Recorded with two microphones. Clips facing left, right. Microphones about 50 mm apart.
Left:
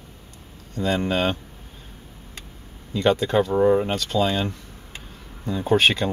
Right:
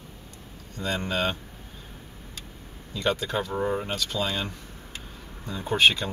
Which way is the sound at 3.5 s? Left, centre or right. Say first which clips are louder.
Left 9 dB; centre.